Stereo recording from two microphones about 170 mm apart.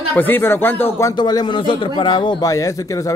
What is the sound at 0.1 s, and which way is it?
A man's voice, 10° left (ahead or behind).